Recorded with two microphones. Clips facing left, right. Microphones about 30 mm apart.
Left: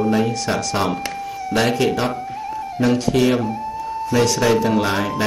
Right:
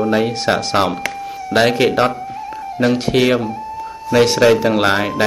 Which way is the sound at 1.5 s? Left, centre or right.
Right.